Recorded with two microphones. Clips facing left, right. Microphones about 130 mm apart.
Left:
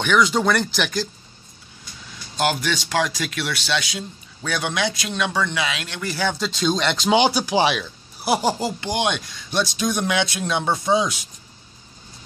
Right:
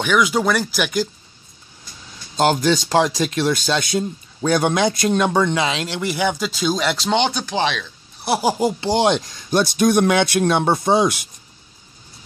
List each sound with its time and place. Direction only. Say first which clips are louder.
0.0 s speech: right 1 dB; 5° right (ahead or behind)
2.3 s speech: right 6 dB; 35° right (ahead or behind)
6.0 s speech: right 2 dB; 15° right (ahead or behind)
7.1 s speech: left 4 dB; 5° left (ahead or behind)
8.5 s speech: right 6 dB; 20° right (ahead or behind)
8.9 s speech: right 6 dB; 35° right (ahead or behind); by 11.1 s 60° right (ahead or behind)